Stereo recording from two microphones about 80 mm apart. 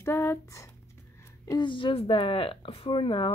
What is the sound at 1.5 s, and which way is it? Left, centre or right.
Speech, left.